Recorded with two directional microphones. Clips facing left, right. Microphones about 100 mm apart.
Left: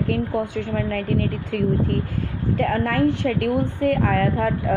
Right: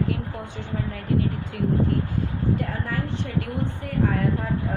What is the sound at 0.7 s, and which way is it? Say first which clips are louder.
Speech: left 1 dB; 90° left.